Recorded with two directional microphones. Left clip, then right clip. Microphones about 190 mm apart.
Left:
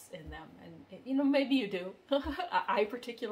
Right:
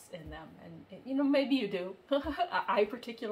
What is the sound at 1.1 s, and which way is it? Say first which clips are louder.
A woman's voice: even; 15° left (ahead or behind).